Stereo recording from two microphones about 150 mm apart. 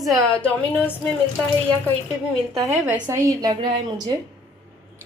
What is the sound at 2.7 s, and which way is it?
A woman's voice, 10° right (ahead or behind).